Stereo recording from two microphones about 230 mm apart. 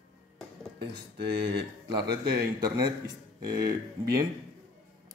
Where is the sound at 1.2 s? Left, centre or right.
Right.